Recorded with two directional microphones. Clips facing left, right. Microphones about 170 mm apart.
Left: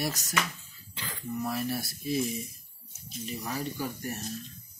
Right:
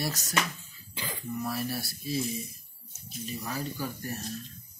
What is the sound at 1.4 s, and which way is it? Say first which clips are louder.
Speech: left 2 dB; 20° left (ahead or behind).